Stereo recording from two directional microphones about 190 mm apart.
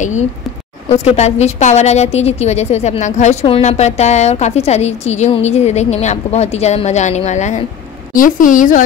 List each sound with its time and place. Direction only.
0.8 s a woman's voice: 35° left (ahead or behind)